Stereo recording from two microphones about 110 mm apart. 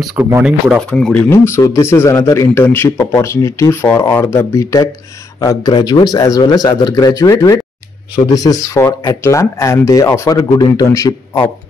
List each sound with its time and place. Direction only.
0.4 s speech: 5° right (ahead or behind)
0.8 s speech: 10° left (ahead or behind)
1.3 s speech: 25° left (ahead or behind)